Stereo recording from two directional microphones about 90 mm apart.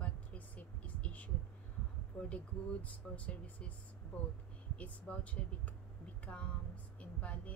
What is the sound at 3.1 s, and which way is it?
Speech, 15° left (ahead or behind).